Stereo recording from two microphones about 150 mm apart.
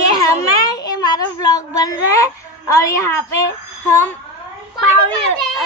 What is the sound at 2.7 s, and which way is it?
A woman's voice, 20° left (ahead or behind).